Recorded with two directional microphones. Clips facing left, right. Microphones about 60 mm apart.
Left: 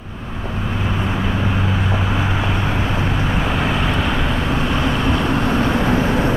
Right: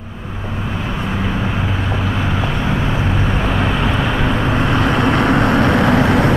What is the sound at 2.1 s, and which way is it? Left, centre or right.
Vehicle, centre.